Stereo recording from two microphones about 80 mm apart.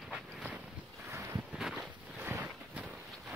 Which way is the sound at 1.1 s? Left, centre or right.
Right.